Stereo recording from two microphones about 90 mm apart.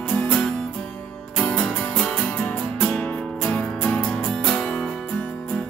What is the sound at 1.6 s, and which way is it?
Music, 10° left (ahead or behind).